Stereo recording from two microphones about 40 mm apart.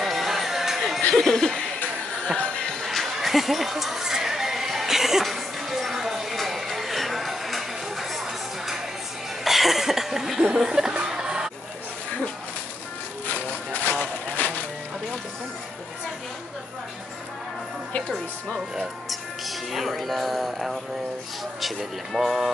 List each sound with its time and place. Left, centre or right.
0.0 s music: centre
1.1 s speech: centre
2.3 s music: left
2.8 s music: centre
9.4 s cough: centre
10.6 s speech: centre
11.1 s a sound: centre
14.4 s music: left
18.1 s speech: centre